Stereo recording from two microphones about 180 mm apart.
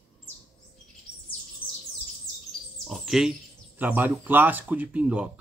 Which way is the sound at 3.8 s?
10° right (ahead or behind).